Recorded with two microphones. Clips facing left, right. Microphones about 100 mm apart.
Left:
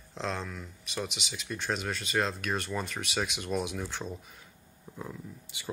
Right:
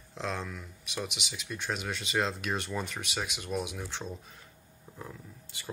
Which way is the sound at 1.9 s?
15° right (ahead or behind).